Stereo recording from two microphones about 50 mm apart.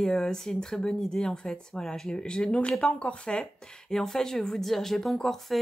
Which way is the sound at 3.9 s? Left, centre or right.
Centre.